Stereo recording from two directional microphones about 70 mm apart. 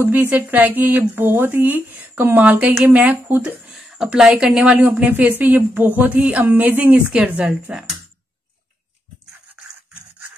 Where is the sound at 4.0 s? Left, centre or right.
Centre.